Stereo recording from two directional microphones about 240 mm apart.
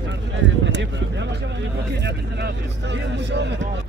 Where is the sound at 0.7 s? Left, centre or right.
Right.